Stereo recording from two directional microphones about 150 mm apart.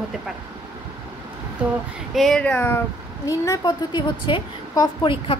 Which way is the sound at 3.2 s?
20° left (ahead or behind).